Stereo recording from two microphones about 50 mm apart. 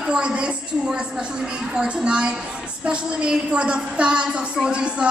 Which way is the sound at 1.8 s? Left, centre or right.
Centre.